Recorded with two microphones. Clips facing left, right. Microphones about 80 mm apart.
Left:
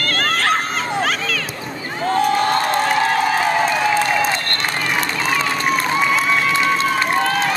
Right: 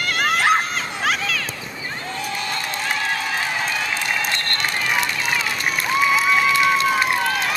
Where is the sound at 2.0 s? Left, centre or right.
Left.